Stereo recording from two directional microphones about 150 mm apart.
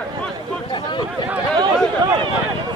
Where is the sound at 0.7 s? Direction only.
30° left (ahead or behind).